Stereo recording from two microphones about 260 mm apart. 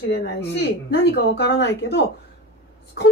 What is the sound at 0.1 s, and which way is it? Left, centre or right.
Speech, left.